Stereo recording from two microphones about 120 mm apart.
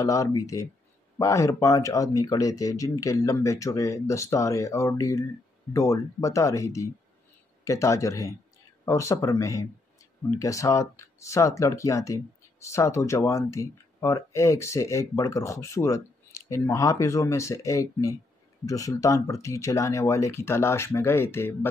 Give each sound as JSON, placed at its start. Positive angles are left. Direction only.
{"t": 0.0, "sound": "speech", "side_deg": 30}